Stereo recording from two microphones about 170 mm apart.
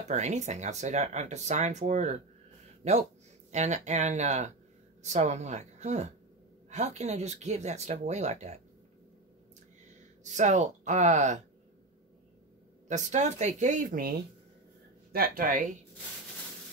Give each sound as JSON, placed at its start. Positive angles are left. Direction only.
{"t": 0.1, "sound": "speech", "side_deg": -40}
{"t": 10.2, "sound": "speech", "side_deg": -45}
{"t": 12.8, "sound": "speech", "side_deg": -45}
{"t": 15.1, "sound": "speech", "side_deg": -60}